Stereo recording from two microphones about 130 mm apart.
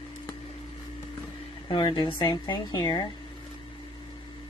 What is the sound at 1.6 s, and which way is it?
A woman's voice, 40° left (ahead or behind).